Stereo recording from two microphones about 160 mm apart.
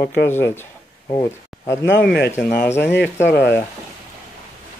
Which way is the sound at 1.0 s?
30° left (ahead or behind).